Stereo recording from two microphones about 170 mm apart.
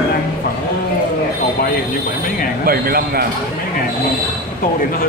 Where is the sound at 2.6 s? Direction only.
60° right (ahead or behind).